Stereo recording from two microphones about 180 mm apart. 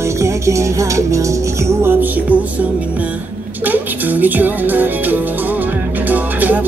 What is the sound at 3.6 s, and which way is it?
Music, 10° right (ahead or behind).